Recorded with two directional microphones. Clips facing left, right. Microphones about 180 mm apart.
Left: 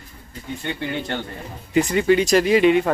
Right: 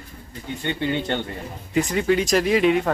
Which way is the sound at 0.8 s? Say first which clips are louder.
Right 4 dB; 20° right (ahead or behind).